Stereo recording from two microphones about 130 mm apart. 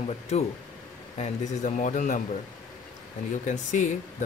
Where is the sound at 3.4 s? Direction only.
75° left (ahead or behind).